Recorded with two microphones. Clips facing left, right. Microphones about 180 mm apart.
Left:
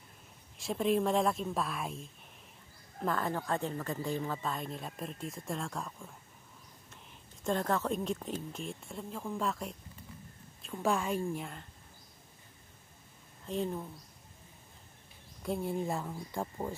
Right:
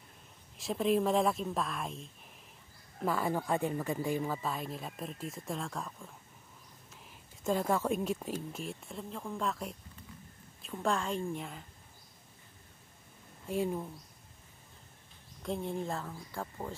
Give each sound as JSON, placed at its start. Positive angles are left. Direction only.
{"t": 0.6, "sound": "speech", "side_deg": 0}
{"t": 3.0, "sound": "speech", "side_deg": -10}
{"t": 7.4, "sound": "speech", "side_deg": -5}
{"t": 13.5, "sound": "speech", "side_deg": -10}
{"t": 15.4, "sound": "speech", "side_deg": 5}